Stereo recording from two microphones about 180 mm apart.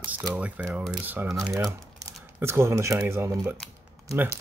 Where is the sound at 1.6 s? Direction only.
20° right (ahead or behind).